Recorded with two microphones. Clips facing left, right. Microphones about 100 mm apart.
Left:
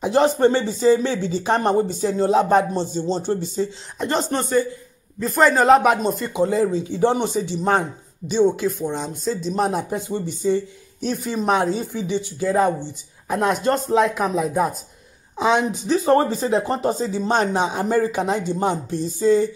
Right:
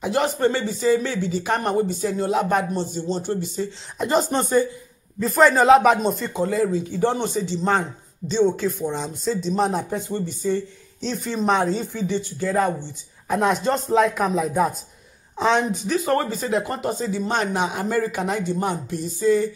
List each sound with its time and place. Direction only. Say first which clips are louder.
0.0 s speech: left 4 dB; 30° left (ahead or behind)
4.0 s speech: right 2 dB; 5° right (ahead or behind)
4.3 s speech: even; 20° right (ahead or behind)
5.2 s speech: even; centre (ahead or behind)
6.3 s speech: left 4 dB; 20° left (ahead or behind)
13.3 s a woman's voice: left 1 dB; centre (ahead or behind)
15.9 s speech: left 6 dB; 30° left (ahead or behind)